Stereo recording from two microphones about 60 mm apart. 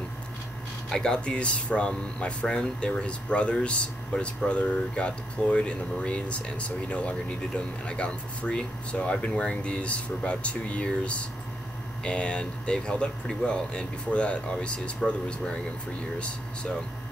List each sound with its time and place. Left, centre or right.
0.8 s speech: centre